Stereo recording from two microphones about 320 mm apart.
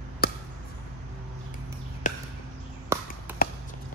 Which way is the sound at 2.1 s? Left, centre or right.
Left.